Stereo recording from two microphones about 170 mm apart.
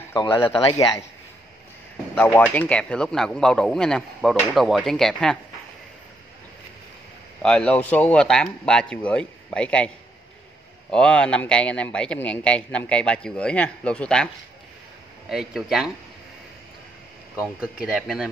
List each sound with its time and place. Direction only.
0.2 s a man's voice: 25° left (ahead or behind)
2.1 s speech: 10° left (ahead or behind)
7.4 s speech: 5° left (ahead or behind)
10.9 s a man's voice: 5° left (ahead or behind)
17.8 s speech: centre (ahead or behind)